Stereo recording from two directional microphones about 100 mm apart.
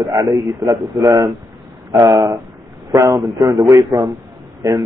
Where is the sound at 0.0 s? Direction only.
40° right (ahead or behind).